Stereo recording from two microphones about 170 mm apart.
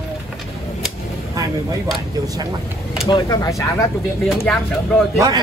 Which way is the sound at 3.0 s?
20° left (ahead or behind).